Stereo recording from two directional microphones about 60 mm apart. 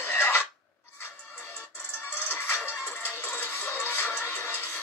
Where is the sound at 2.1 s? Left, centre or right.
Left.